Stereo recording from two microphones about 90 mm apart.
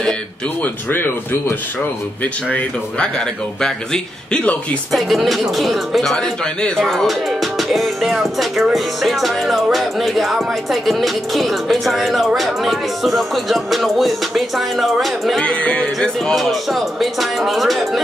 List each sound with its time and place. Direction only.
0.8 s speech: 25° left (ahead or behind)
3.6 s speech: 10° left (ahead or behind)
4.9 s music: centre (ahead or behind)
15.4 s music: 15° left (ahead or behind)